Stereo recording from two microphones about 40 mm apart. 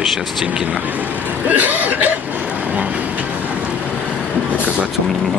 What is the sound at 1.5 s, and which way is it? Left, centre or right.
Speech, right.